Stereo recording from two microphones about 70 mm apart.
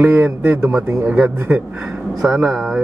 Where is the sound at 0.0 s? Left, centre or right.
Right.